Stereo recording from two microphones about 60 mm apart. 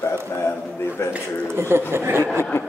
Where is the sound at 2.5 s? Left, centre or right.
Left.